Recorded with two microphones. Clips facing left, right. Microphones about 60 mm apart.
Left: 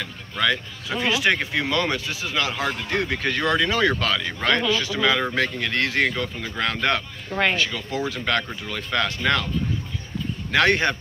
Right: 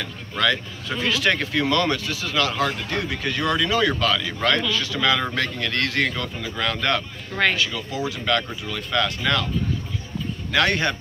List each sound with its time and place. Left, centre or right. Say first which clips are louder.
0.0 s speech: right 1 dB; centre; by 9.5 s left
10.5 s speech: left 2 dB; left